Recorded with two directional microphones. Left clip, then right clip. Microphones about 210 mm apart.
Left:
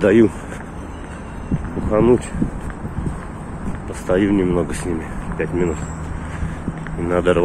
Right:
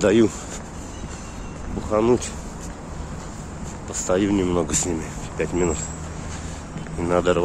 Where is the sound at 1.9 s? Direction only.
5° right (ahead or behind).